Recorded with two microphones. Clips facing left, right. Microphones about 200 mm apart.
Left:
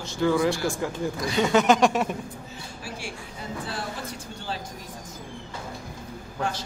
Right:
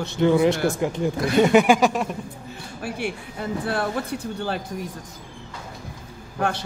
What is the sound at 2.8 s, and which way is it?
Speech, 60° right (ahead or behind).